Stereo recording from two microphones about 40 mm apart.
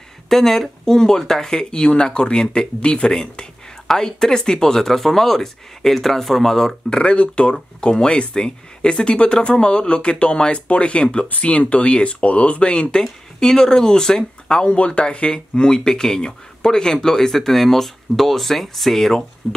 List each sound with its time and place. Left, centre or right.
0.3 s speech: centre; by 13.0 s left
13.4 s speech: centre
14.6 s speech: left; by 19.6 s centre